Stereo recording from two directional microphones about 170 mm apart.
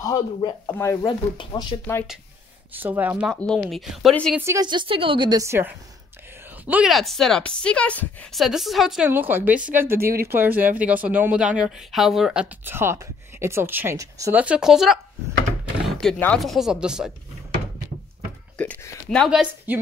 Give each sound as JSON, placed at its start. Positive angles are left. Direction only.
{"t": 0.0, "sound": "speech", "side_deg": 25}
{"t": 1.0, "sound": "speech", "side_deg": 25}
{"t": 2.7, "sound": "speech", "side_deg": -10}
{"t": 3.3, "sound": "a woman's voice", "side_deg": 0}
{"t": 4.4, "sound": "speech", "side_deg": -15}
{"t": 4.6, "sound": "a woman's voice", "side_deg": -30}
{"t": 14.4, "sound": "a woman's voice", "side_deg": -5}
{"t": 16.0, "sound": "a woman's voice", "side_deg": 5}
{"t": 18.6, "sound": "speech", "side_deg": 10}
{"t": 19.0, "sound": "a woman's voice", "side_deg": 0}